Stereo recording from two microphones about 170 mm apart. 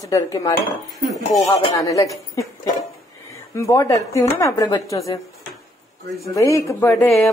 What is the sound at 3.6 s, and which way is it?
Speech, 20° left (ahead or behind).